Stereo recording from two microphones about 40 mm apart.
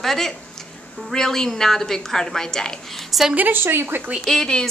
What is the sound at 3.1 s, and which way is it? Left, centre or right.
Speech, centre.